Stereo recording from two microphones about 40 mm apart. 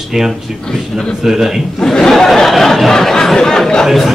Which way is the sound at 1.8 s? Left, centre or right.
Centre.